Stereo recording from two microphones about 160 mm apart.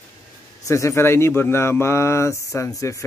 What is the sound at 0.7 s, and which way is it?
Speech, 20° left (ahead or behind).